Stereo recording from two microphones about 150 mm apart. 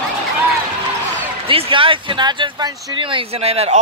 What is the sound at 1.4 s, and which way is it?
Speech, 40° right (ahead or behind).